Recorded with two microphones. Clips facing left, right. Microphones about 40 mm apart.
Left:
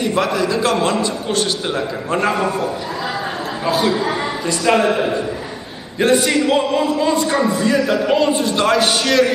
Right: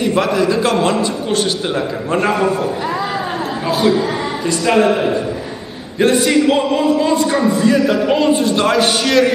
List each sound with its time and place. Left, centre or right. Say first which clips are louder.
0.0 s a man's voice: right 3 dB; centre
3.6 s a man's voice: right 2 dB; centre